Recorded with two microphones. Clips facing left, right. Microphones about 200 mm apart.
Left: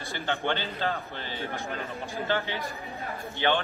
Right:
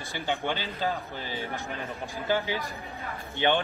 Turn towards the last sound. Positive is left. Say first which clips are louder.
# right 1 dB
turn(degrees=-15)  # may be behind; listen again after turning